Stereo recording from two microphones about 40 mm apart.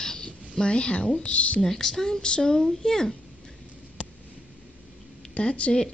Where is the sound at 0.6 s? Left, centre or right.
Left.